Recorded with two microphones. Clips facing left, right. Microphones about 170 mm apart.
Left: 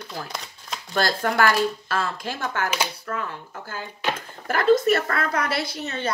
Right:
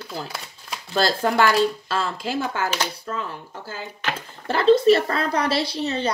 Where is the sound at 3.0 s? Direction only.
25° right (ahead or behind).